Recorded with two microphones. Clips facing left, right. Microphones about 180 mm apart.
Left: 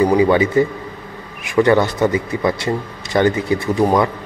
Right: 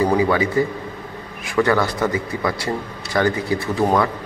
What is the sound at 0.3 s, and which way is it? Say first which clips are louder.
A man's voice: left 4 dB; 25° left (ahead or behind).